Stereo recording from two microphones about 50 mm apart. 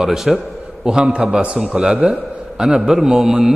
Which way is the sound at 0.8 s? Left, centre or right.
Centre.